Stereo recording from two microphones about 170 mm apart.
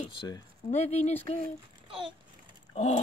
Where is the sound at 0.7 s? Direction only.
40° left (ahead or behind).